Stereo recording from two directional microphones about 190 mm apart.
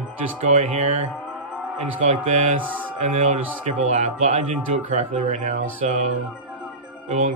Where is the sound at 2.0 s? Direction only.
40° right (ahead or behind).